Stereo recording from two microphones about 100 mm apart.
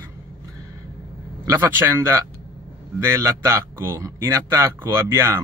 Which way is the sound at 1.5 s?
25° right (ahead or behind).